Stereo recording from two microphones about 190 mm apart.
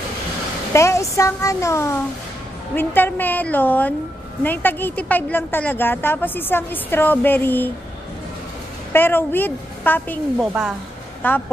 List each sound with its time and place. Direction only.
0.7 s a woman's voice: 15° left (ahead or behind)
8.9 s a woman's voice: 10° left (ahead or behind)
10.4 s a woman's voice: 5° right (ahead or behind)
11.2 s a woman's voice: 10° left (ahead or behind)